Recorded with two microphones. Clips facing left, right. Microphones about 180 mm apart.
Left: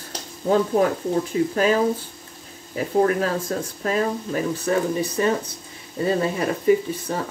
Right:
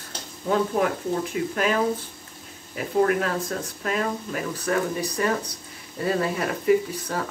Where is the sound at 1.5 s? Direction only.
30° left (ahead or behind).